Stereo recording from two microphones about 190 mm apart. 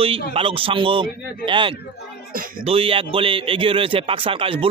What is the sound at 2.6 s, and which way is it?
Speech, 30° right (ahead or behind).